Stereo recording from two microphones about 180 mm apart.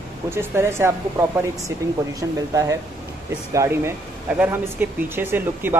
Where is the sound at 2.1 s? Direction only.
20° right (ahead or behind).